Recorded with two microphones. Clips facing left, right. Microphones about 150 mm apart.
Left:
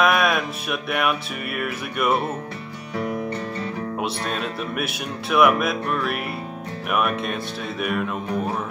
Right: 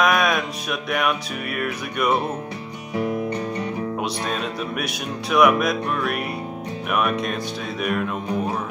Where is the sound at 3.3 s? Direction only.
15° right (ahead or behind).